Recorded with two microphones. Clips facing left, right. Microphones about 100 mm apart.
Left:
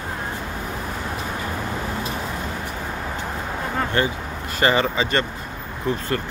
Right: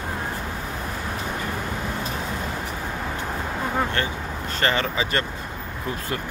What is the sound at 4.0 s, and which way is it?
Speech, 15° left (ahead or behind).